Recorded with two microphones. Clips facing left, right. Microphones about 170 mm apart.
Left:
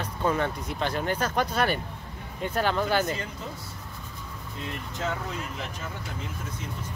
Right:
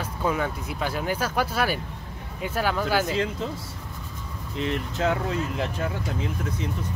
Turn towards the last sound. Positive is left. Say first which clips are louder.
# right 8 dB
turn(degrees=-70)  # may be behind; listen again after turning